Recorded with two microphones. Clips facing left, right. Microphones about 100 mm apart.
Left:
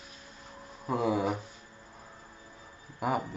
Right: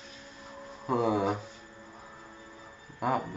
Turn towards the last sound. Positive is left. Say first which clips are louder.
# right 1 dB
turn(degrees=5)  # may be behind; listen again after turning